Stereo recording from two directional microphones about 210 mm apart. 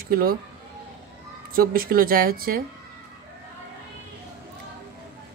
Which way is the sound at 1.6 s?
45° right (ahead or behind).